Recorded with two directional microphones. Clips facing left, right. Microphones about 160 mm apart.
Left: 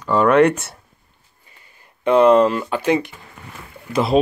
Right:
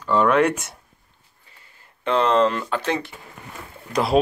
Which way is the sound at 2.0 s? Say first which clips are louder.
Left 6 dB; 15° left (ahead or behind).